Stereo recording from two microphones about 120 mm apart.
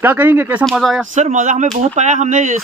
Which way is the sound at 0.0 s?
15° right (ahead or behind).